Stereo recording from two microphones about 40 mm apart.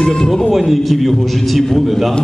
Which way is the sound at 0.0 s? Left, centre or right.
Centre.